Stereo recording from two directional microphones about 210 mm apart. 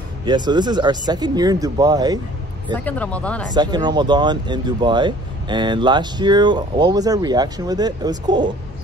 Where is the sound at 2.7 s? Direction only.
5° left (ahead or behind).